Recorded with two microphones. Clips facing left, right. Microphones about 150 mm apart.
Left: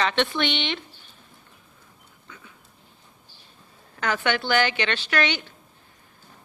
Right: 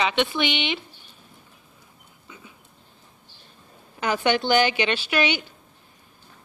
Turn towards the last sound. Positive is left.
turn(degrees=-10)  # may be behind; listen again after turning